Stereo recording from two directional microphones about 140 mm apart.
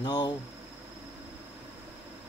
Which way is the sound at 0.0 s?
30° left (ahead or behind).